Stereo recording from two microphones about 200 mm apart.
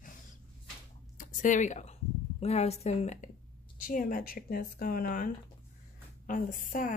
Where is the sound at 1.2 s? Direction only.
40° left (ahead or behind).